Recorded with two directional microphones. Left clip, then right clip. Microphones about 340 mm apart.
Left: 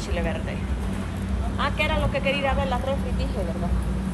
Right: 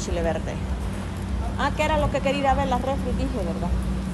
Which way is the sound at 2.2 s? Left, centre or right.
Right.